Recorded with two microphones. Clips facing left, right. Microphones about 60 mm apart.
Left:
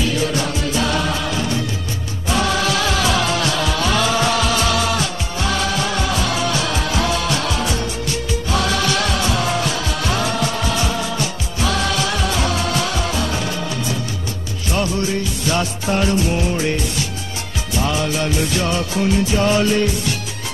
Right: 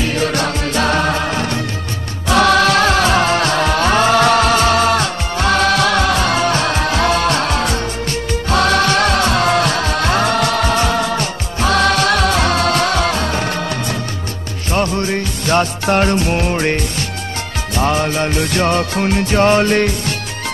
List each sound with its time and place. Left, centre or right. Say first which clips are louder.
0.0 s music: right 3 dB; right
2.2 s music: right 7 dB; right